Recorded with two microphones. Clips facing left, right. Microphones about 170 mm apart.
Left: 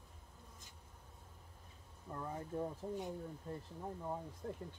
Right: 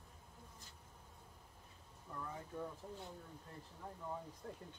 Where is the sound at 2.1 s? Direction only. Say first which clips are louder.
Left 4 dB; 30° left (ahead or behind).